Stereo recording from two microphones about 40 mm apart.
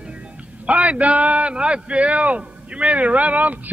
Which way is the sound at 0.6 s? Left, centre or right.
Right.